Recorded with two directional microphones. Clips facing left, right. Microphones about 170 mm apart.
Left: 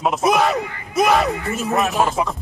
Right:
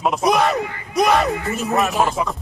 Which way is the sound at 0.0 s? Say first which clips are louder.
Even; centre (ahead or behind).